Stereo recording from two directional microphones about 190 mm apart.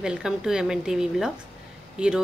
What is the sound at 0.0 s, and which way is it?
Speech, 5° right (ahead or behind).